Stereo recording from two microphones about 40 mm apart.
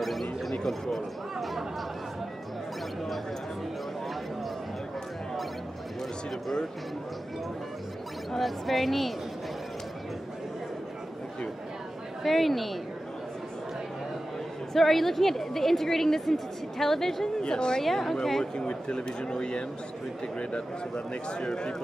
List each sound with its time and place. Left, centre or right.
0.0 s speech: centre
8.3 s a woman's voice: centre
12.2 s a woman's voice: centre
14.7 s a woman's voice: centre
17.4 s speech: left
17.8 s speech: centre
18.4 s speech: left